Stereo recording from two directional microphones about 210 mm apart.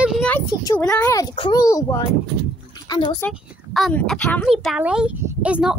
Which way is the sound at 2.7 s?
20° left (ahead or behind).